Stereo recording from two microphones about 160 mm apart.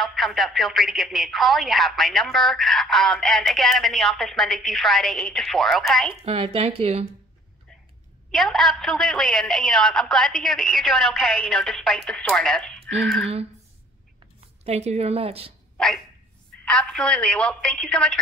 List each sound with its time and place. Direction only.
0.0 s speech: centre (ahead or behind)
6.2 s a woman's voice: 35° right (ahead or behind)
8.3 s speech: centre (ahead or behind)
14.6 s a woman's voice: 40° right (ahead or behind)
16.6 s speech: 5° left (ahead or behind)